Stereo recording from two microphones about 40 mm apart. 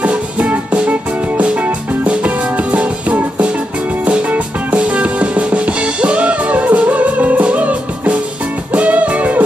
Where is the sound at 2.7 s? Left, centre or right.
Right.